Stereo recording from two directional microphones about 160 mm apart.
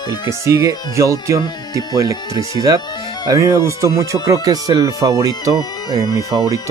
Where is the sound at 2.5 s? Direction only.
25° right (ahead or behind).